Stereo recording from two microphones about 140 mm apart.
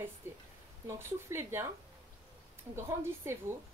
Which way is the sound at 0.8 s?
20° right (ahead or behind).